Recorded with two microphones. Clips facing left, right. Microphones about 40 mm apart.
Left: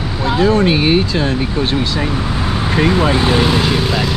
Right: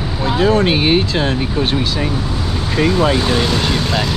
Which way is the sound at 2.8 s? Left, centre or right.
Left.